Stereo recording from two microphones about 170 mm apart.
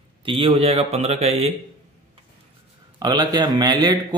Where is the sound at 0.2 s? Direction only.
30° right (ahead or behind).